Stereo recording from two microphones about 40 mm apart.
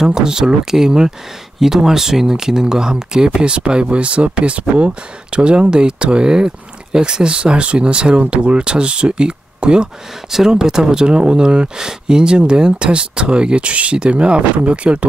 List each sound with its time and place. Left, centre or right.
0.0 s speech: centre